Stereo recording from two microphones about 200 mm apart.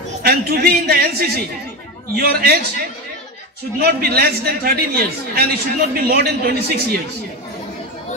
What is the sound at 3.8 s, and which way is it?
A man's voice, 50° right (ahead or behind).